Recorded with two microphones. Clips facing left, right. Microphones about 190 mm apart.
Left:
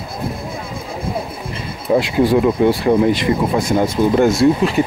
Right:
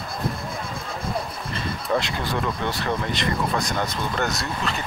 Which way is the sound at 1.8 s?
15° left (ahead or behind).